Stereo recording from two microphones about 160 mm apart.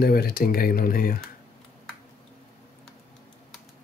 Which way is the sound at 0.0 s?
70° left (ahead or behind).